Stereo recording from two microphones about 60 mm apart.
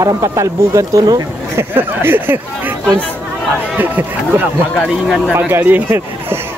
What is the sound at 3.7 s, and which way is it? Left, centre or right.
Speech, right.